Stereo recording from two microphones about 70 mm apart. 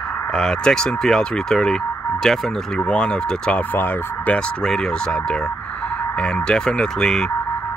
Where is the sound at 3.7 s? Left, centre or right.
Left.